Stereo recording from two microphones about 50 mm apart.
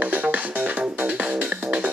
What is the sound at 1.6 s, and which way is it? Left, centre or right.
Music, centre.